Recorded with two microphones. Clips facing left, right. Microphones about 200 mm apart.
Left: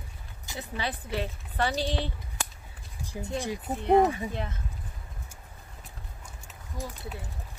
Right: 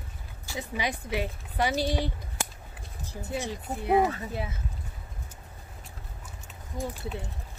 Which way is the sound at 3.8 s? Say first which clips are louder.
Left 2 dB; 5° right (ahead or behind).